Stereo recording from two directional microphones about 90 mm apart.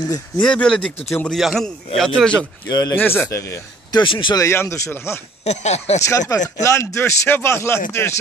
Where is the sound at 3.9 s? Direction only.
65° left (ahead or behind).